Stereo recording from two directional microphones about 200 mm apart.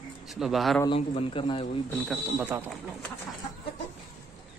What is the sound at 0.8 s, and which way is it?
Speech, 25° left (ahead or behind).